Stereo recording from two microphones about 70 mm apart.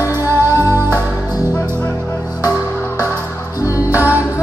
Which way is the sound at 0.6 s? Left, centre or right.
Right.